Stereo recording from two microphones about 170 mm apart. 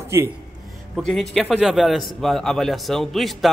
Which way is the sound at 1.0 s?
Centre (ahead or behind).